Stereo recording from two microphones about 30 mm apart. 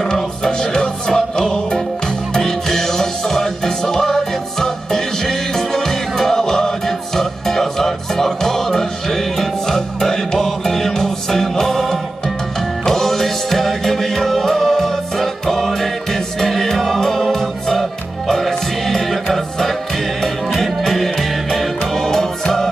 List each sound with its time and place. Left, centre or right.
0.0 s music: left; by 17.0 s centre
18.4 s music: centre
20.5 s music: centre